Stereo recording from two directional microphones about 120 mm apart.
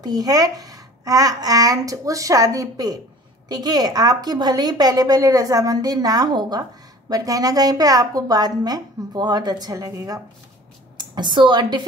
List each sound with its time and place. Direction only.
0.0 s a woman's voice: 30° right (ahead or behind)
11.0 s a woman's voice: 40° right (ahead or behind)